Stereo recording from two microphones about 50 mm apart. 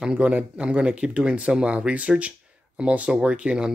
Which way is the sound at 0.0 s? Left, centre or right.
Right.